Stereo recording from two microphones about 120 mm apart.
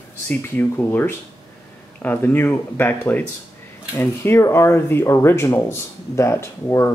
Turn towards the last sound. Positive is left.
turn(degrees=20)  # may be behind; listen again after turning